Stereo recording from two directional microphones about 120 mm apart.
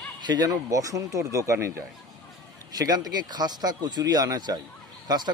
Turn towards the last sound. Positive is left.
turn(degrees=-35)  # may be behind; listen again after turning